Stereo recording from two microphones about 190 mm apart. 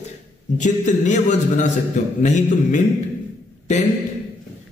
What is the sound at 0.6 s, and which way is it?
A man's voice, 40° left (ahead or behind).